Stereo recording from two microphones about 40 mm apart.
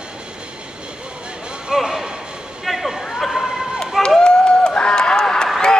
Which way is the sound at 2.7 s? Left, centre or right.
Centre.